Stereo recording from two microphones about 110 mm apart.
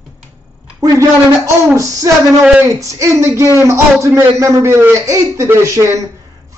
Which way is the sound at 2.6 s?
30° right (ahead or behind).